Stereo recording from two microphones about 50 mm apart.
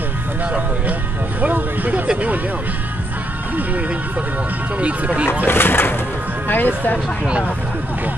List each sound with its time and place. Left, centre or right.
1.4 s speech: right
4.7 s speech: right
5.4 s speech: left